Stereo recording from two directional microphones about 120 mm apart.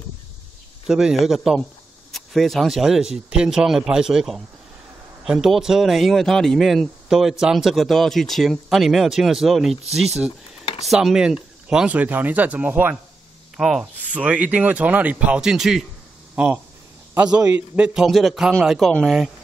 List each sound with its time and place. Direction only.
0.8 s speech: 5° right (ahead or behind)
10.6 s a sound: 55° left (ahead or behind)
10.9 s speech: 5° right (ahead or behind)